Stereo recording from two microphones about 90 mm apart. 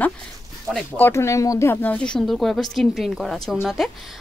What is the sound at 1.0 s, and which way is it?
Speech, 30° left (ahead or behind).